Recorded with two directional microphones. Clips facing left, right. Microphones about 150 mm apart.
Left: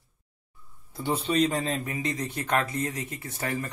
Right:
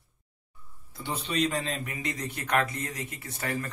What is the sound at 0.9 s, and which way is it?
A man's voice, 35° left (ahead or behind).